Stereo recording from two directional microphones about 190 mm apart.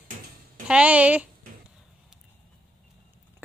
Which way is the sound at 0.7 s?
5° right (ahead or behind).